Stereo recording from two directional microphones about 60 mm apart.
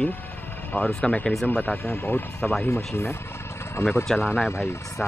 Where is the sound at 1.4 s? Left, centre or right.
Left.